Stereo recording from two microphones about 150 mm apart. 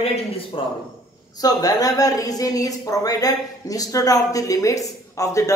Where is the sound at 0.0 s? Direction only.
45° left (ahead or behind).